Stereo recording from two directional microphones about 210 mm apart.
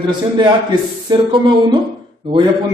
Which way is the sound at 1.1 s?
25° right (ahead or behind).